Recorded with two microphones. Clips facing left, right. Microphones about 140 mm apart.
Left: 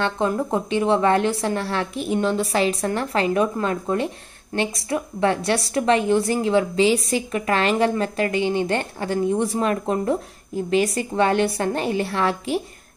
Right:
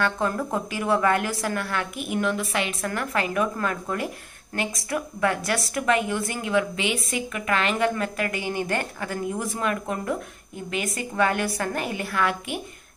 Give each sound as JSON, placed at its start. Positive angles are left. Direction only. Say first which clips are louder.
{"t": 0.0, "sound": "a woman's voice", "louder": "left 3 dB", "side_deg": 20}